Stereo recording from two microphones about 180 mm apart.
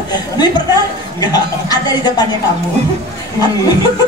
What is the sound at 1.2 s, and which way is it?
A man's voice, 20° left (ahead or behind).